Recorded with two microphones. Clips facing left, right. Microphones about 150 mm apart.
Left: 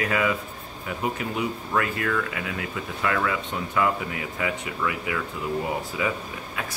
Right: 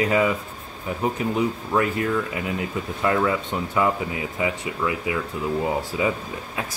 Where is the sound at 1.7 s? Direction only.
25° right (ahead or behind).